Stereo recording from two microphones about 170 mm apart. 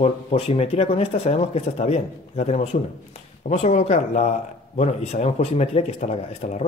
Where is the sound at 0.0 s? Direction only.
40° left (ahead or behind).